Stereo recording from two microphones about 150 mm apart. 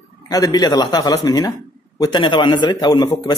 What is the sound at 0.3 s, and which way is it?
A man's voice, 25° left (ahead or behind).